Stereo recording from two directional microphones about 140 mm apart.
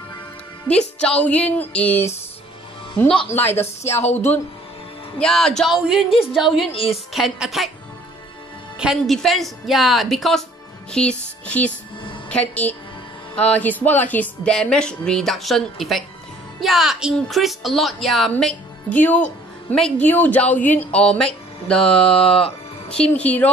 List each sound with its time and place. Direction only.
0.7 s a woman's voice: 5° left (ahead or behind)
3.3 s a woman's voice: 15° left (ahead or behind)
5.2 s a woman's voice: 5° left (ahead or behind)
6.7 s a woman's voice: 40° left (ahead or behind)
7.1 s a woman's voice: centre (ahead or behind)
8.7 s a woman's voice: 5° right (ahead or behind)